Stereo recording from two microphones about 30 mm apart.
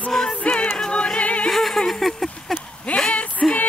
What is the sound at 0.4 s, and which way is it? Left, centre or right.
Music, left.